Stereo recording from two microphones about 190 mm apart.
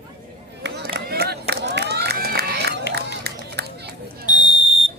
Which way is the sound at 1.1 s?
55° right (ahead or behind).